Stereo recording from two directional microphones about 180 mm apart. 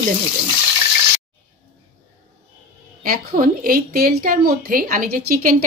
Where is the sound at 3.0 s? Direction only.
50° right (ahead or behind).